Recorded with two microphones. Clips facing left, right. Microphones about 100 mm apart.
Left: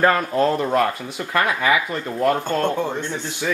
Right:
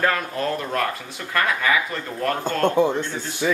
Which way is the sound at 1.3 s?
20° left (ahead or behind).